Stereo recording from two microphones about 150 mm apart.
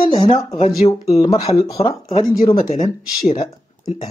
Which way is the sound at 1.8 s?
25° left (ahead or behind).